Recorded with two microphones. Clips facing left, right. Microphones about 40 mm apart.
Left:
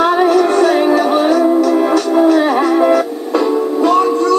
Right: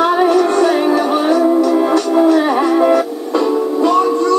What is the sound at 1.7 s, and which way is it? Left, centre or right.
Music, centre.